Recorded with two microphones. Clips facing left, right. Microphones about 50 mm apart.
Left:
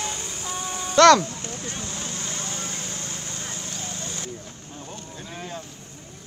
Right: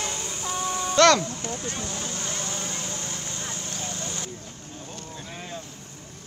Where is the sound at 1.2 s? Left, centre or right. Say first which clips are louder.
Right 1 dB; right.